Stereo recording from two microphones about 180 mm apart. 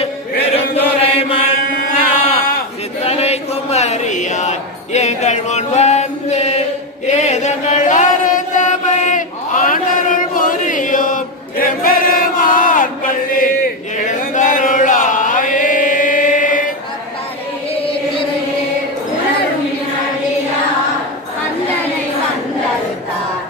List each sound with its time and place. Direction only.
1.0 s mantra: 30° left (ahead or behind)
2.1 s sheep: 30° left (ahead or behind)
3.0 s a sound: 35° left (ahead or behind)
7.1 s chant: 40° left (ahead or behind)